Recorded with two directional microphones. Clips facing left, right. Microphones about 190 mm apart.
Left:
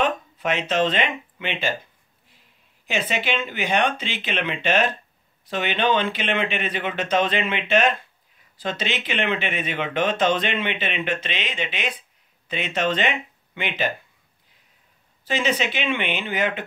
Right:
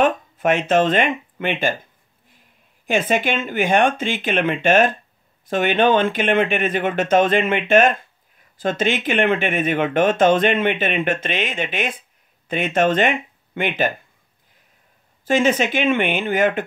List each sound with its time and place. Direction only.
0.0 s speech: 50° right (ahead or behind)
2.9 s speech: 50° right (ahead or behind)
15.2 s speech: 50° right (ahead or behind)